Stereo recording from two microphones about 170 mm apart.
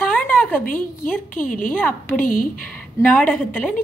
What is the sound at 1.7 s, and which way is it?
Speech, 10° left (ahead or behind).